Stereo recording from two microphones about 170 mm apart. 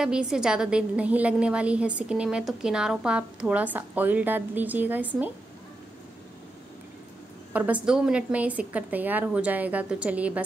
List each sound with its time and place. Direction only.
0.0 s a woman's voice: 5° right (ahead or behind)
7.5 s a woman's voice: 10° right (ahead or behind)